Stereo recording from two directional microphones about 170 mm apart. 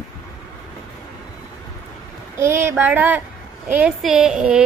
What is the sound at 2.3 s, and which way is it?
A child's voice, 15° right (ahead or behind).